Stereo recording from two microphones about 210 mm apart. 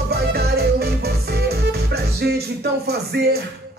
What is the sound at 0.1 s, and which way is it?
Music, 50° right (ahead or behind).